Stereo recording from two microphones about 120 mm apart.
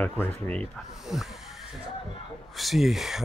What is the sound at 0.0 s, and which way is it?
Speech, 15° left (ahead or behind).